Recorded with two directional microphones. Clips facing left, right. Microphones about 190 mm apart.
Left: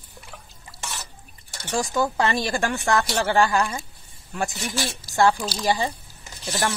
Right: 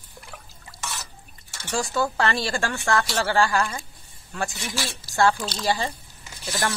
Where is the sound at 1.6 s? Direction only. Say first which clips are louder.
Left 1 dB; 15° left (ahead or behind).